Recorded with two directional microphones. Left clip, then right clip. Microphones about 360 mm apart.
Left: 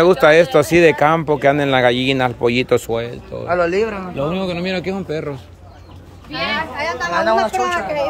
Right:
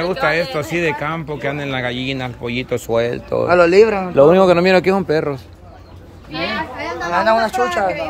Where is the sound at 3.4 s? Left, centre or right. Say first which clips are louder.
Right 6 dB; right; by 5.3 s centre.